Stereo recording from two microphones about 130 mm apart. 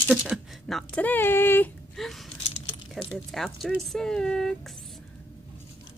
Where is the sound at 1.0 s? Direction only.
15° left (ahead or behind).